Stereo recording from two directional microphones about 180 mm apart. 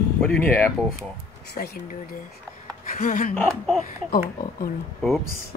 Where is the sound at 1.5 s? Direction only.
60° left (ahead or behind).